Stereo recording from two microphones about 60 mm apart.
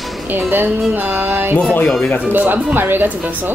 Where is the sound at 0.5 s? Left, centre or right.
Right.